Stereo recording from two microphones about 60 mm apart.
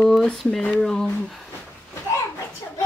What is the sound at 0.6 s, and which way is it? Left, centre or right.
Speech, centre.